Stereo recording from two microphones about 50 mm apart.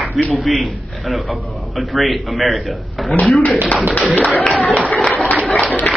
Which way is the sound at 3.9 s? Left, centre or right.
Left.